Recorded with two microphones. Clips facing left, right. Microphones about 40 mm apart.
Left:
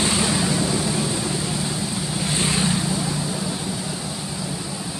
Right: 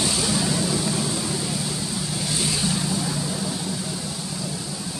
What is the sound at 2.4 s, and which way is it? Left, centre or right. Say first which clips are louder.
Vehicle: left 4 dB; left.